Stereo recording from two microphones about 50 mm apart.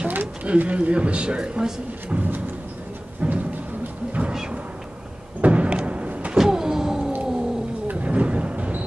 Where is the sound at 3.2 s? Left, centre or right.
Right.